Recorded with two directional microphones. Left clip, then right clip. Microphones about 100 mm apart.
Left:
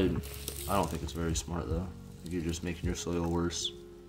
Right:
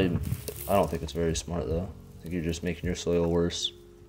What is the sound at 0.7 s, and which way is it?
Speech, 45° right (ahead or behind).